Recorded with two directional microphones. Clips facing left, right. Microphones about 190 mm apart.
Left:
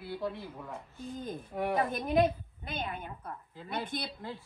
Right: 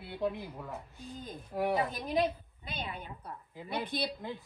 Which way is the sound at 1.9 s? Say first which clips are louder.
Left 4 dB; 55° left (ahead or behind).